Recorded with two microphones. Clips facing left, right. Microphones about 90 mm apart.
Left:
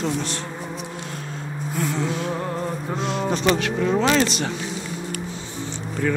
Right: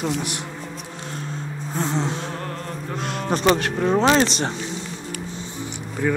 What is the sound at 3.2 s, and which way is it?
Speech, 45° right (ahead or behind).